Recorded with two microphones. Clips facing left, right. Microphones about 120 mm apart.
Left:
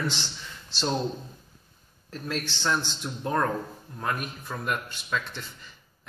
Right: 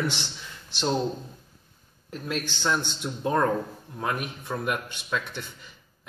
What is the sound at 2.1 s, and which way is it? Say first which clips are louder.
Speech: right 1 dB; 15° right (ahead or behind).